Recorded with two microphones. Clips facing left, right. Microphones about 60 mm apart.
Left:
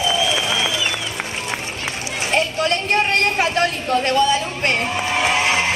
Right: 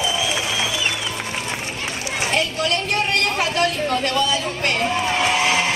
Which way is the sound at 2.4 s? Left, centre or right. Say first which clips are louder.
Left 5 dB; left.